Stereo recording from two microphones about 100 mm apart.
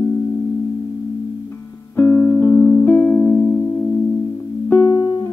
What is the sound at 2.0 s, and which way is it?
Music, 20° left (ahead or behind).